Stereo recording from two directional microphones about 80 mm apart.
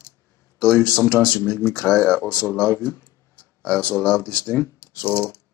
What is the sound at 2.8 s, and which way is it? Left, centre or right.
Speech, left.